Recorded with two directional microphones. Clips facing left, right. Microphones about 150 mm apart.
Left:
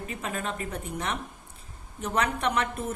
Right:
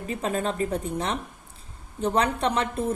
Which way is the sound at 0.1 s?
30° right (ahead or behind).